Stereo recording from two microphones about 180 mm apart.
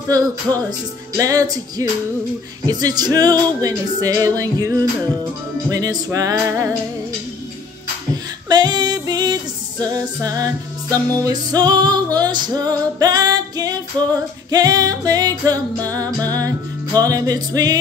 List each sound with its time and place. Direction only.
0.1 s music: 20° right (ahead or behind)
8.1 s female singing: 25° right (ahead or behind)
14.5 s music: 20° right (ahead or behind)